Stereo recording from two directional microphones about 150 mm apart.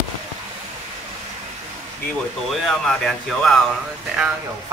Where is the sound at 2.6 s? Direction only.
Centre (ahead or behind).